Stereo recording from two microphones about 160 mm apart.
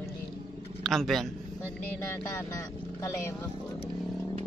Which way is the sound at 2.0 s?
15° left (ahead or behind).